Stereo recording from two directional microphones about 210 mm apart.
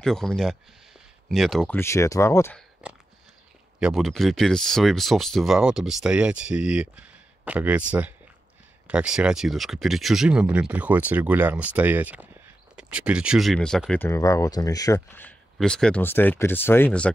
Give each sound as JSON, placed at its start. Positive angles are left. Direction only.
{"t": 0.0, "sound": "speech", "side_deg": 0}
{"t": 2.8, "sound": "a sound", "side_deg": -5}
{"t": 3.8, "sound": "speech", "side_deg": 0}